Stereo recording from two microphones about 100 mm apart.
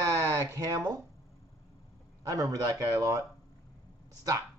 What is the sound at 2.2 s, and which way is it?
Speech, 35° right (ahead or behind).